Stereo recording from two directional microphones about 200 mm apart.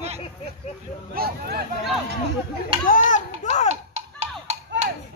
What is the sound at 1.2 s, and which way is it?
Speech, 50° right (ahead or behind).